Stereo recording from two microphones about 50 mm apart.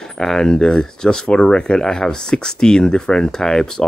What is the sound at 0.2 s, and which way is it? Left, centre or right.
Speech, centre.